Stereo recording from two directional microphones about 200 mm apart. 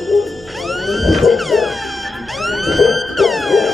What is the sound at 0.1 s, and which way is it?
Music, centre (ahead or behind).